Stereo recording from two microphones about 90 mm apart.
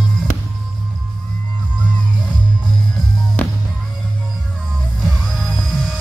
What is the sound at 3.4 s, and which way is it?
Music, 20° left (ahead or behind).